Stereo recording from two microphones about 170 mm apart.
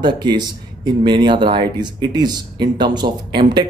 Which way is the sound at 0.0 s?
25° right (ahead or behind).